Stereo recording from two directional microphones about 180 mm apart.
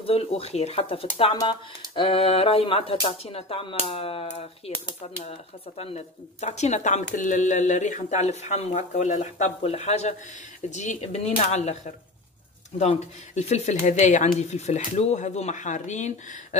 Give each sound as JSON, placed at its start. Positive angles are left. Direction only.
{"t": 0.0, "sound": "speech", "side_deg": 30}
{"t": 5.8, "sound": "speech", "side_deg": 35}